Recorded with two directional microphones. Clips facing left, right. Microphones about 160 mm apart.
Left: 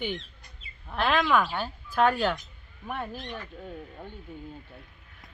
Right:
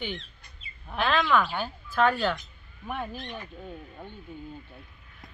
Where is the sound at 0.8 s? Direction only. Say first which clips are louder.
Even; 5° left (ahead or behind).